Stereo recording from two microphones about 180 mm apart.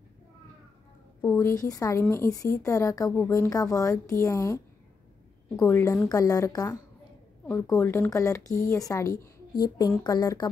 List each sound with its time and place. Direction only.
1.2 s a woman's voice: 15° left (ahead or behind)
5.6 s a woman's voice: 15° left (ahead or behind)
7.4 s a woman's voice: 5° left (ahead or behind); by 10.5 s 20° left (ahead or behind)